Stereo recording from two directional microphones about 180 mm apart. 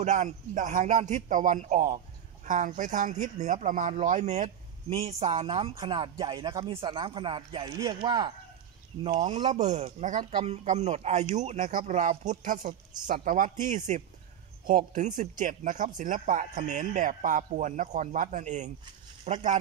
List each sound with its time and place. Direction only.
0.0 s a man's voice: 40° right (ahead or behind); by 8.3 s 25° right (ahead or behind)
9.2 s a man's voice: 40° right (ahead or behind)